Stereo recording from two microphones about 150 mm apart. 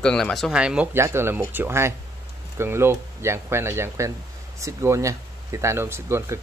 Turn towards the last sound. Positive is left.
turn(degrees=-20)  # may be behind; listen again after turning